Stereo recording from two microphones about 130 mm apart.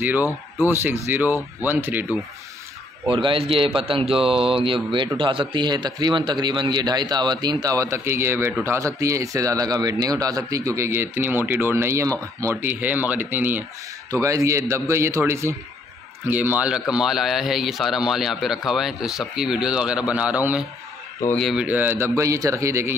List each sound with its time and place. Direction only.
0.0 s speech: 15° right (ahead or behind)
3.1 s a man's voice: 40° right (ahead or behind); by 20.6 s 10° right (ahead or behind)
21.4 s a man's voice: centre (ahead or behind)
21.6 s a man's voice: 15° right (ahead or behind)